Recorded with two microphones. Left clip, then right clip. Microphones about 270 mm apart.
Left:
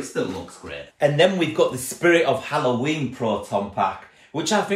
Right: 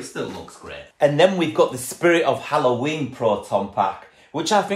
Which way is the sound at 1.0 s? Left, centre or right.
Right.